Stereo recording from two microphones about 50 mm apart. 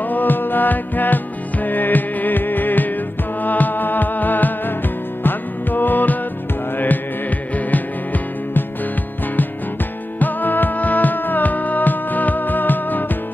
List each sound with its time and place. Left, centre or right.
0.0 s music: left
10.1 s music: left